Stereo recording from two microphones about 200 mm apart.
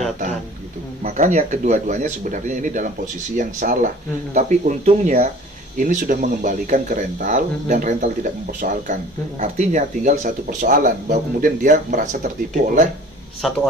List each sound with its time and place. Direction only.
1.0 s speech: 35° right (ahead or behind)
13.4 s a man's voice: centre (ahead or behind)